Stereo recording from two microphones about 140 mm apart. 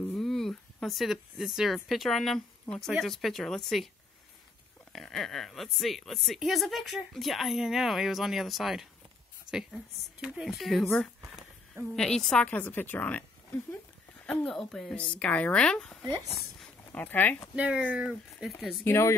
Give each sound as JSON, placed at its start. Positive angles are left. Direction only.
{"t": 0.1, "sound": "a woman's voice", "side_deg": 5}
{"t": 4.9, "sound": "a woman's voice", "side_deg": 0}
{"t": 16.9, "sound": "speech", "side_deg": 10}
{"t": 17.6, "sound": "speech", "side_deg": -10}
{"t": 18.9, "sound": "speech", "side_deg": 15}